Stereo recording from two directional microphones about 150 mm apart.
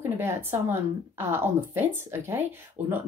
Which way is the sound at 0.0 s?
15° right (ahead or behind).